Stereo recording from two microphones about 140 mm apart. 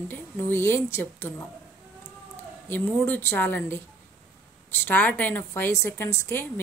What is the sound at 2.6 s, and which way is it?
A woman's voice, 15° left (ahead or behind).